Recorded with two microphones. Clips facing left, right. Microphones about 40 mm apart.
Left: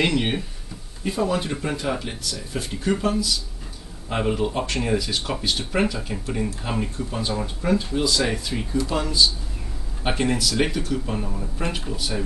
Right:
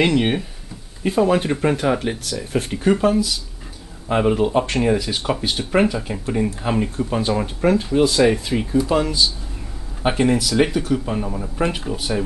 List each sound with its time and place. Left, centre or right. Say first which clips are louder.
0.1 s speech: right 5 dB; centre
1.0 s speech: right 6 dB; right
2.9 s speech: right 6 dB; right
7.0 s speech: right 6 dB; right
8.5 s speech: right 6 dB; centre